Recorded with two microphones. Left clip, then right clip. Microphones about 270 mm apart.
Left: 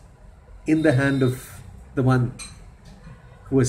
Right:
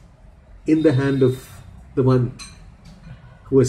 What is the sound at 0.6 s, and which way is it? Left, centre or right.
Speech, centre.